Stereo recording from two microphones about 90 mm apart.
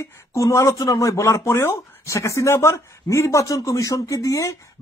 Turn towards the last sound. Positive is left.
turn(degrees=40)  # may be behind; listen again after turning